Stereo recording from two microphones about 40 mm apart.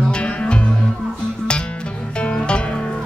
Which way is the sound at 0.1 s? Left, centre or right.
Left.